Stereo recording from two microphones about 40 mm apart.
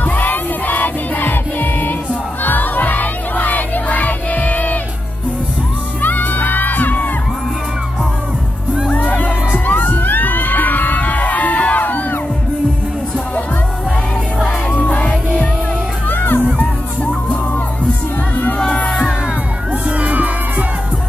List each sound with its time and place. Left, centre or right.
0.0 s music: left
2.4 s crowd: left
6.0 s music: left
9.7 s crowd: left
14.7 s music: left
16.1 s music: left
16.5 s music: left
19.7 s music: right